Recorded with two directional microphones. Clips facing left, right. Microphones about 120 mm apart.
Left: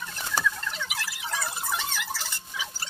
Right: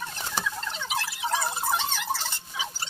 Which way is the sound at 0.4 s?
25° right (ahead or behind).